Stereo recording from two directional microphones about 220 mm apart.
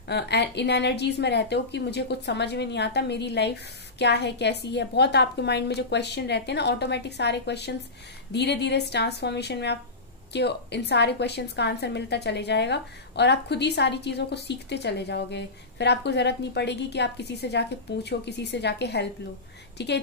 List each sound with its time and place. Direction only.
0.1 s a woman's voice: 50° left (ahead or behind)